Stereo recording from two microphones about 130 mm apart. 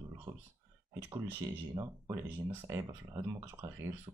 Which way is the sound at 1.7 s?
25° right (ahead or behind).